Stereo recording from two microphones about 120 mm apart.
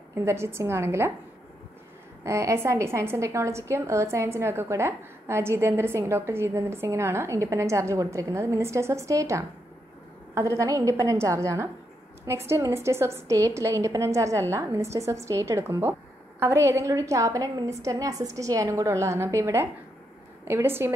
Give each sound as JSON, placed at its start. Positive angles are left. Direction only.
{"t": 0.1, "sound": "a woman's voice", "side_deg": -20}
{"t": 2.2, "sound": "a woman's voice", "side_deg": -25}